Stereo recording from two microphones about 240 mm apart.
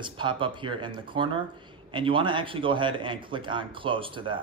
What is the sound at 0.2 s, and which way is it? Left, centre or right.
A man's voice, centre.